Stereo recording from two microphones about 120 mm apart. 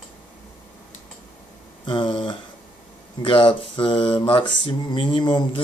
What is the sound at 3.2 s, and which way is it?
Mantra, 45° left (ahead or behind).